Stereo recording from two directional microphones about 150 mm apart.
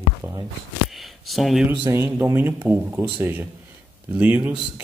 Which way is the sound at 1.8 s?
15° right (ahead or behind).